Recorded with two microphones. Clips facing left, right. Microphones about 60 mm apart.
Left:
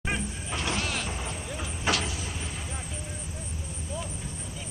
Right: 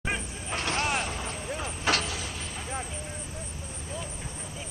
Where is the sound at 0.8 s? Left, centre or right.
Right.